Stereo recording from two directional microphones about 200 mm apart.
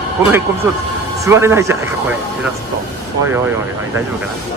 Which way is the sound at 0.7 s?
10° right (ahead or behind).